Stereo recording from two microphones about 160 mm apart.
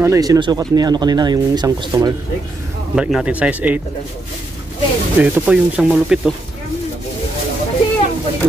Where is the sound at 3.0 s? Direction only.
5° right (ahead or behind).